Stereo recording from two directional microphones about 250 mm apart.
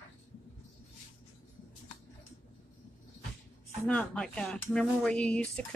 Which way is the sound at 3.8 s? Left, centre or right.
Centre.